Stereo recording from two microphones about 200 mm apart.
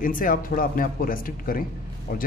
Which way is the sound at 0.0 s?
45° left (ahead or behind).